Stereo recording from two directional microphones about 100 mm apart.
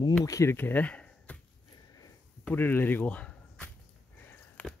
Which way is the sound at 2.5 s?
20° left (ahead or behind).